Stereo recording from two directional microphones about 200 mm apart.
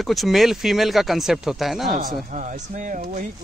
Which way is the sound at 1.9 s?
40° right (ahead or behind).